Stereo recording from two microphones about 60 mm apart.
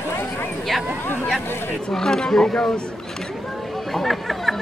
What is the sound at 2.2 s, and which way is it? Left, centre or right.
Speech, centre.